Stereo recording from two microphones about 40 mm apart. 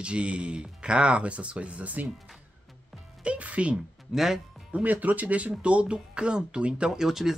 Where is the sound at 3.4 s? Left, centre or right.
Right.